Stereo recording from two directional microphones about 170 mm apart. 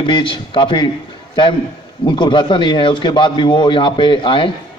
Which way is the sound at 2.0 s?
25° left (ahead or behind).